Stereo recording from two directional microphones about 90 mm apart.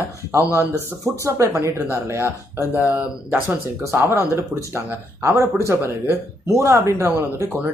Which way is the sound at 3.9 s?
25° right (ahead or behind).